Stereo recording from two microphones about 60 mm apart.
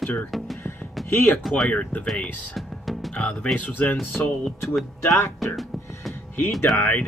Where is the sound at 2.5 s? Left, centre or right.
Centre.